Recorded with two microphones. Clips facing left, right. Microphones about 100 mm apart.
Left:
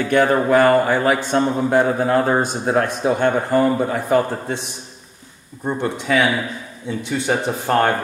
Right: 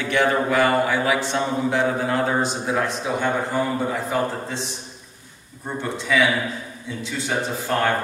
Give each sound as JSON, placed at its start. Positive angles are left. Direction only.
{"t": 0.0, "sound": "speech", "side_deg": 45}
{"t": 5.8, "sound": "speech", "side_deg": 50}